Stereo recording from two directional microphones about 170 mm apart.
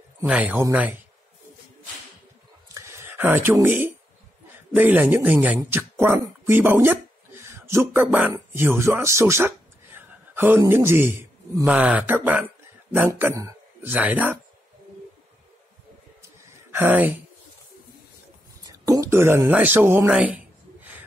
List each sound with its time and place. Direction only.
0.2 s speech: 10° right (ahead or behind)
2.7 s a sound: 15° right (ahead or behind)
4.5 s a man's voice: 10° right (ahead or behind)
16.7 s speech: 10° right (ahead or behind)
18.7 s speech: 20° right (ahead or behind)